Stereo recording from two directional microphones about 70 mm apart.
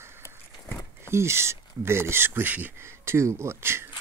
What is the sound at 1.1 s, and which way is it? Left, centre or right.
Speech, right.